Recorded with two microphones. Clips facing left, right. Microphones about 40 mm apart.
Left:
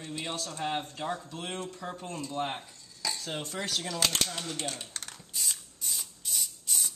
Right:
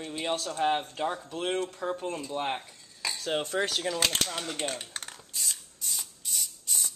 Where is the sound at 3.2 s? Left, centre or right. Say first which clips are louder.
Right 7 dB; right.